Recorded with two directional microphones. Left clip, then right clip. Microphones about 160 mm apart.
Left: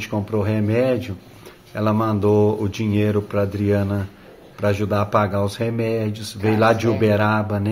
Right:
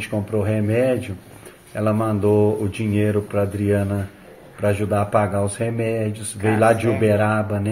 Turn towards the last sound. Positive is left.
turn(degrees=15)  # may be behind; listen again after turning